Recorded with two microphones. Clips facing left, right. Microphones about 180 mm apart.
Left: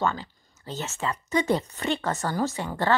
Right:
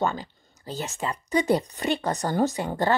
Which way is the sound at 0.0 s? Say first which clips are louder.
Right 1 dB; 15° right (ahead or behind).